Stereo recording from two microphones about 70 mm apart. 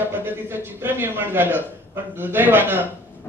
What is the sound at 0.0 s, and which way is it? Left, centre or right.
A man's voice, right.